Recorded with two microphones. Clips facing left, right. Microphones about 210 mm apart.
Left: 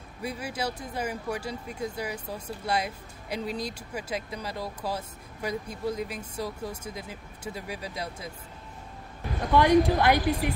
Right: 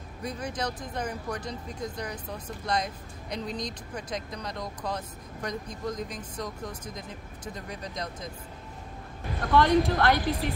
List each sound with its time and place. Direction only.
0.2 s speech: 5° left (ahead or behind)
9.5 s speech: 10° left (ahead or behind)